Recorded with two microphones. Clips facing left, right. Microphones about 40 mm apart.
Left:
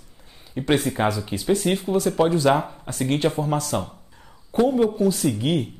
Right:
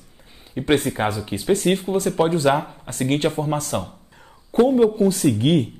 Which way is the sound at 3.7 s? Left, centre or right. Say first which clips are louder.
Even; centre.